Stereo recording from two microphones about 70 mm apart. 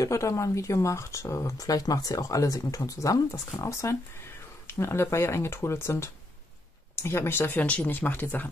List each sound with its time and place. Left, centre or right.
0.0 s speech: left